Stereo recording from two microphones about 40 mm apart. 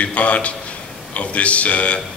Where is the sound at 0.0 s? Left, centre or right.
Left.